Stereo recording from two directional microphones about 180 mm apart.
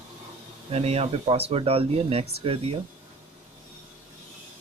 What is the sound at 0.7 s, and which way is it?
Speech, 35° right (ahead or behind).